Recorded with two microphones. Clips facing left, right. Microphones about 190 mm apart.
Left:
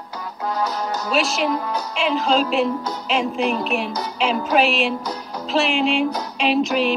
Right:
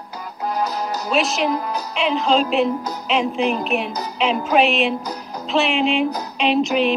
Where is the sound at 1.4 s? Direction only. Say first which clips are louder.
Right 1 dB; 30° right (ahead or behind).